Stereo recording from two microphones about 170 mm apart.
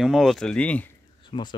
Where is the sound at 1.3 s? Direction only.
30° left (ahead or behind).